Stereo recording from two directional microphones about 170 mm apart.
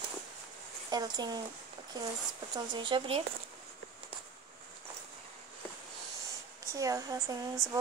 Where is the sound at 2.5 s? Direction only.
25° right (ahead or behind).